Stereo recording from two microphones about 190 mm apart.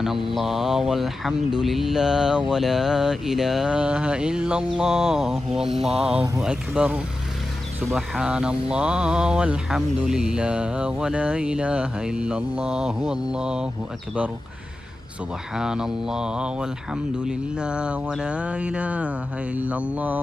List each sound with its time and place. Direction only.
0.0 s speech: centre (ahead or behind)
5.7 s mantra: 35° right (ahead or behind)
6.4 s speech: 5° right (ahead or behind)
15.5 s speech: 5° right (ahead or behind)